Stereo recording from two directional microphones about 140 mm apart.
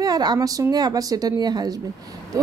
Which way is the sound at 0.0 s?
30° right (ahead or behind).